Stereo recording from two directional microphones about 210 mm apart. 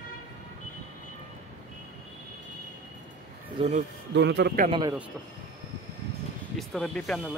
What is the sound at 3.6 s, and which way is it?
Speech, 30° right (ahead or behind).